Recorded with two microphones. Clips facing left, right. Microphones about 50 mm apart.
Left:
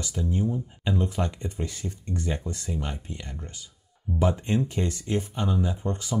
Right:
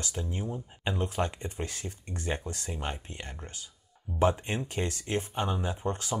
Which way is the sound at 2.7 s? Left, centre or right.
Right.